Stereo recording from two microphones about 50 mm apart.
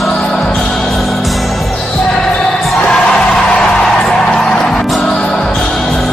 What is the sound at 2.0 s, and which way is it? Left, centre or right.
Basketball bounce, centre.